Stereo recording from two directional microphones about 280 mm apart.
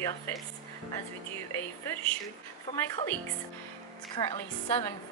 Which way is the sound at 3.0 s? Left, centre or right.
Left.